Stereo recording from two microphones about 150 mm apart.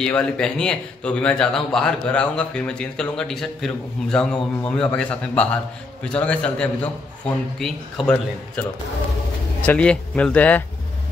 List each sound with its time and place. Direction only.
0.0 s speech: 5° left (ahead or behind)
9.7 s speech: 10° left (ahead or behind)